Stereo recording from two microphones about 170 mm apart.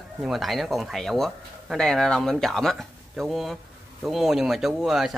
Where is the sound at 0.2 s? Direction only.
Centre (ahead or behind).